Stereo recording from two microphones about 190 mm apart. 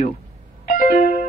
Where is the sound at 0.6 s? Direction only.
45° left (ahead or behind).